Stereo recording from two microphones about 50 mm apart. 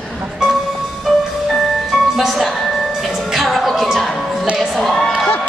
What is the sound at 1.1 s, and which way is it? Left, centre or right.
Music, centre.